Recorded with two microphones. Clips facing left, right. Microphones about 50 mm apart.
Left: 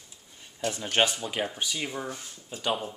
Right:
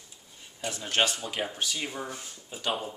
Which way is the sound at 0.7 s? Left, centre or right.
Centre.